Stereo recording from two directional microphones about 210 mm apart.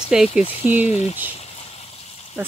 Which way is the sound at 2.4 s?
10° right (ahead or behind).